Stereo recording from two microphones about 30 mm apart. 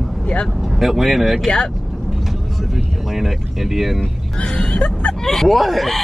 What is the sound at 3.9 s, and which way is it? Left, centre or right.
Speech, left.